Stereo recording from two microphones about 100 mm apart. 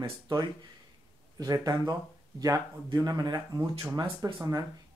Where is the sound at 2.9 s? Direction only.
40° right (ahead or behind).